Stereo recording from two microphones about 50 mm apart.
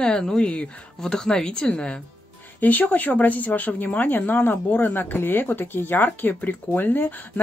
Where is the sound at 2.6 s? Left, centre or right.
Left.